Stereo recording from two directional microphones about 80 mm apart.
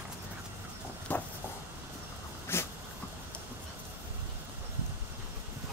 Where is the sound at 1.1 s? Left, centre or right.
Left.